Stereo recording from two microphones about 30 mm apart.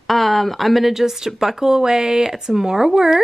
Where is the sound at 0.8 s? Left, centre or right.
Centre.